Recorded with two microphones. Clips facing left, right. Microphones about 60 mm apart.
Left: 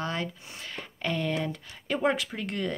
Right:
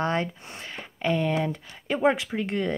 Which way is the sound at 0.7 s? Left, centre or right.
Centre.